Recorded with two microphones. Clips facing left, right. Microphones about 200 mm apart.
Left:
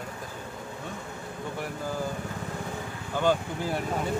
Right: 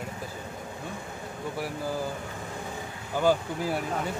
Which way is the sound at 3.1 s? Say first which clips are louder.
Right 1 dB; 5° right (ahead or behind).